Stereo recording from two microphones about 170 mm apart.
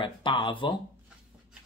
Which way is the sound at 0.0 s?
30° left (ahead or behind).